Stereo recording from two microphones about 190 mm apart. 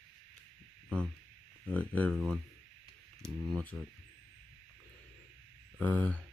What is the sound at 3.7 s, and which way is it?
Speech, centre (ahead or behind).